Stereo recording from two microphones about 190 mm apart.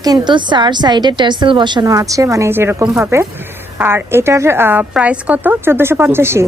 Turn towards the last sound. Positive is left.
turn(degrees=-10)  # may be behind; listen again after turning